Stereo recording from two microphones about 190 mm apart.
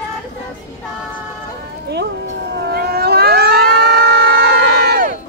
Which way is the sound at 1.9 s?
60° right (ahead or behind).